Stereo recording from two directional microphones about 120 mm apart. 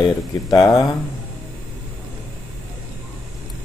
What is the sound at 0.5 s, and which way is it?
Speech, 30° left (ahead or behind).